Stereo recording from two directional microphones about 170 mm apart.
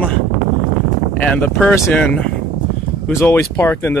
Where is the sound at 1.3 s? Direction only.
10° left (ahead or behind).